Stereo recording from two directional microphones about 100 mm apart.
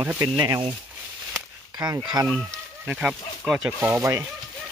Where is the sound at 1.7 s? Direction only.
40° right (ahead or behind).